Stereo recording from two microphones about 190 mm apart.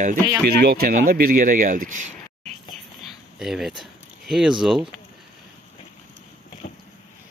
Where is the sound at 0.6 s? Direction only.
50° right (ahead or behind).